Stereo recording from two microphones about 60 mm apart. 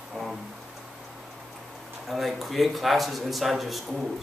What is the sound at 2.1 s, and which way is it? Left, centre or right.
A man's voice, centre.